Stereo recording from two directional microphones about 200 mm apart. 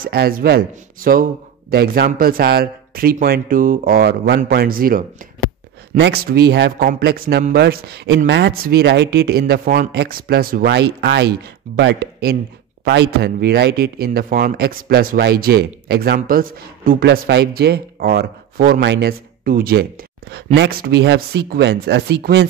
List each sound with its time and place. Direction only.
0.0 s speech: 50° right (ahead or behind)